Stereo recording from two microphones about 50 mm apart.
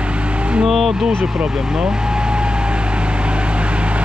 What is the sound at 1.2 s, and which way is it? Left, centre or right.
Vehicle, centre.